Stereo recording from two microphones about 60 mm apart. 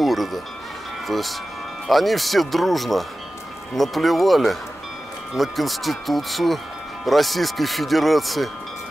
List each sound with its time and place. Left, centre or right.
0.0 s speech: centre